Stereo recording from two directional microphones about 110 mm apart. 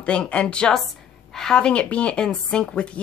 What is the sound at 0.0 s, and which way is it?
A woman's voice, 10° left (ahead or behind).